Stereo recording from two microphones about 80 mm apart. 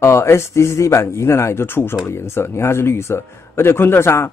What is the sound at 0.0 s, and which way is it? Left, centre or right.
Speech, left.